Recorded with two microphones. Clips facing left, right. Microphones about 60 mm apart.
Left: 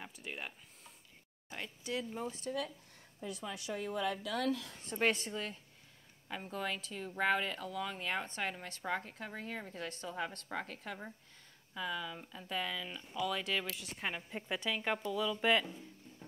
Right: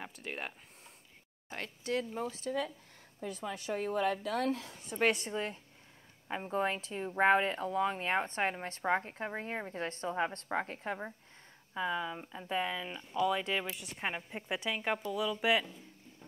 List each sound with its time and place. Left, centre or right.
0.2 s speech: centre
1.6 s speech: right
4.9 s speech: right
15.6 s a sound: centre